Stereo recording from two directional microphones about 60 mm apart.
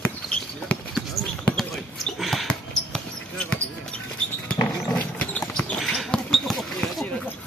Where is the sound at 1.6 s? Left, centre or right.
Centre.